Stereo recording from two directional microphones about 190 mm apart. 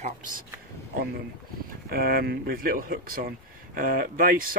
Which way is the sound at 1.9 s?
55° right (ahead or behind).